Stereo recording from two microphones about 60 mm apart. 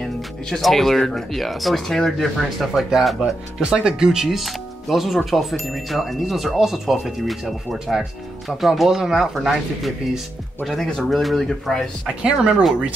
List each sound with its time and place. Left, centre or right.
0.6 s speech: centre
3.6 s speech: centre
12.2 s speech: centre